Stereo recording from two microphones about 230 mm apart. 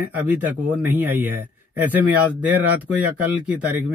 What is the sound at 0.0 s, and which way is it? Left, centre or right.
A man's voice, centre.